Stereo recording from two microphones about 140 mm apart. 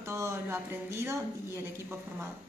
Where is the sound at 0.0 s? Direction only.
20° right (ahead or behind).